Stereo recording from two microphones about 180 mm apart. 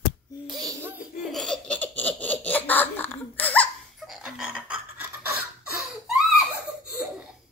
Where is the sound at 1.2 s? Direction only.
Centre (ahead or behind).